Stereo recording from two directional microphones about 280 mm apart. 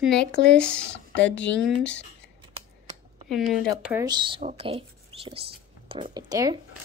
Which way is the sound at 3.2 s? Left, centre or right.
Centre.